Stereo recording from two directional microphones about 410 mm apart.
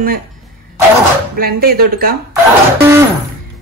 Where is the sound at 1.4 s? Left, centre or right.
Right.